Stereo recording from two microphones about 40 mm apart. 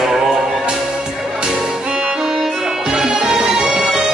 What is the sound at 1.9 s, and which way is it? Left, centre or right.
Music, centre.